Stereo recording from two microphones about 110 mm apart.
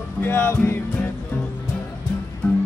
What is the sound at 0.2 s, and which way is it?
Music, 20° left (ahead or behind).